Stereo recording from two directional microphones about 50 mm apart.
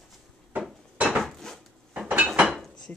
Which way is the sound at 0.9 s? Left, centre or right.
Right.